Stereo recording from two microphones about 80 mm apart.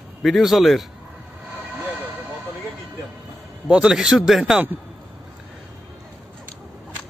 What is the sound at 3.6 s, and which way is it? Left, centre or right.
Speech, centre.